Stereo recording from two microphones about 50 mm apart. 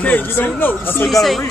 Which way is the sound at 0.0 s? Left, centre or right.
Left.